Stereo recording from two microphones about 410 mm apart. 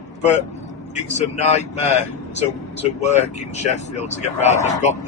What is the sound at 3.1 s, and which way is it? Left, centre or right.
A man's voice, centre.